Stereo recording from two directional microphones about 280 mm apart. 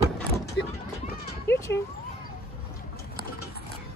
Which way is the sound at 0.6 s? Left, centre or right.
Left.